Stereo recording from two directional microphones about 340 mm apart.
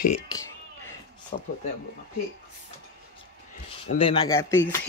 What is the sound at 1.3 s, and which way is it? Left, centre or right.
Speech, centre.